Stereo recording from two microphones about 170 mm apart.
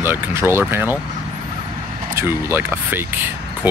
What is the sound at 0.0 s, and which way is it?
Speech, 15° right (ahead or behind).